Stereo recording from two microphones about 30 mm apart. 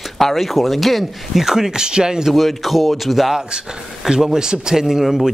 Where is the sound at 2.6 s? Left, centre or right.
Centre.